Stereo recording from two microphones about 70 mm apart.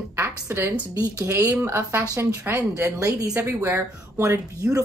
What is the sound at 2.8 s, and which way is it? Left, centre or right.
Speech, right.